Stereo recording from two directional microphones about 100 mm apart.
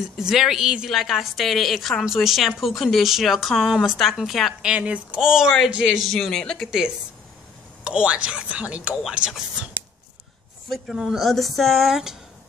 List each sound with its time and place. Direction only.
0.2 s a woman's voice: 5° right (ahead or behind)
7.8 s speech: 10° right (ahead or behind)
10.7 s a woman's voice: 5° right (ahead or behind)